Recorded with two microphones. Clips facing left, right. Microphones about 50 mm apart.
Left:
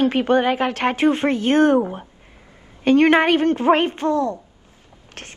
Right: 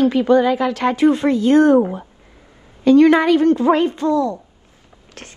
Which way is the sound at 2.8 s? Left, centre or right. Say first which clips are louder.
Right 3 dB; left.